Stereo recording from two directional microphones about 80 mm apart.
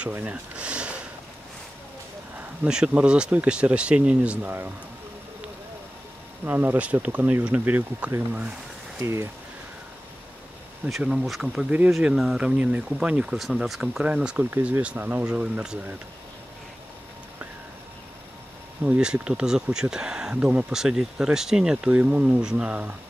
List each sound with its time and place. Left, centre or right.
0.1 s a sound: centre
2.3 s a sound: centre
2.9 s speech: centre
6.4 s speech: right
9.0 s speech: right
10.9 s speech: centre
12.4 s speech: centre
18.9 s speech: centre
20.7 s speech: centre